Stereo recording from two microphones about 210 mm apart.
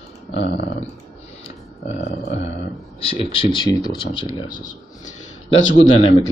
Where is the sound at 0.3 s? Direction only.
55° left (ahead or behind).